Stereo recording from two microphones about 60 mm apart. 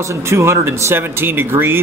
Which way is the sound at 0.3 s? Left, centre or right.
Right.